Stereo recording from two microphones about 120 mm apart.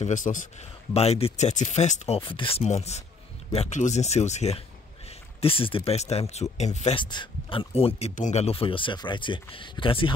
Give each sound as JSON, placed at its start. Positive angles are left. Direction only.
{"t": 0.0, "sound": "speech", "side_deg": 90}
{"t": 2.1, "sound": "speech", "side_deg": 45}
{"t": 7.0, "sound": "speech", "side_deg": 40}